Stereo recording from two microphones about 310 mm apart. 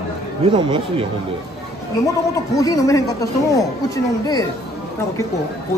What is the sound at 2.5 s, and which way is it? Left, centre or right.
Speech, centre.